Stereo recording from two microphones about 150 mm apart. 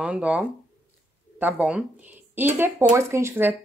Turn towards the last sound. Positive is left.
turn(degrees=-15)  # may be behind; listen again after turning